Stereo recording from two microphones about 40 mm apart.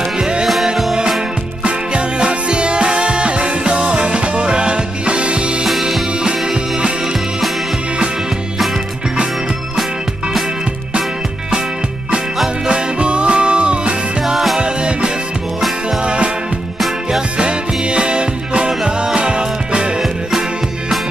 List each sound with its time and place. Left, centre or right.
0.2 s music: centre
1.6 s music: right
5.7 s music: centre
6.4 s music: centre
12.6 s music: right
14.2 s music: centre
14.6 s music: right
17.4 s music: right
20.0 s music: centre